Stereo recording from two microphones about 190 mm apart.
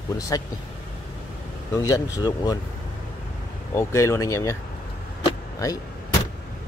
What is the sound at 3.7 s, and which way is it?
Speech, 15° left (ahead or behind).